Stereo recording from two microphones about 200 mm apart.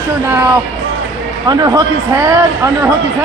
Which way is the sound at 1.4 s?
20° right (ahead or behind).